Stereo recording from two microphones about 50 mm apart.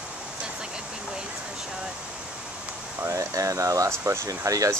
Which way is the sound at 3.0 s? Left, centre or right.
Right.